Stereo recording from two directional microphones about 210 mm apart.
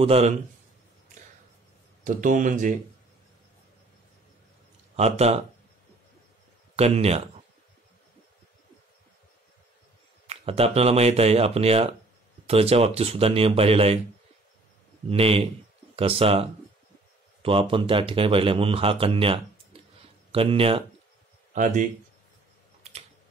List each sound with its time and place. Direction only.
0.0 s speech: 30° right (ahead or behind)
2.0 s speech: 40° right (ahead or behind)
4.9 s speech: 30° right (ahead or behind)
6.8 s speech: 30° right (ahead or behind)
10.2 s speech: 30° right (ahead or behind)
15.0 s speech: 30° right (ahead or behind)
22.8 s typing: 30° right (ahead or behind)